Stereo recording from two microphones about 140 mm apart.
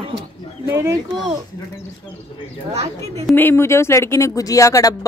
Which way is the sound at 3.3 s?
15° left (ahead or behind).